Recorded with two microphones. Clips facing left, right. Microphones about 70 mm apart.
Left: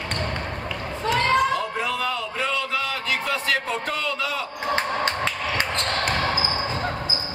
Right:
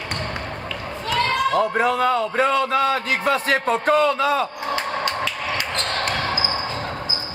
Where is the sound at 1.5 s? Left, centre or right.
Right.